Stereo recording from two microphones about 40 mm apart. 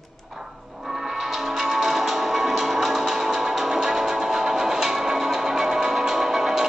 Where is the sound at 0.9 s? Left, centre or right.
Centre.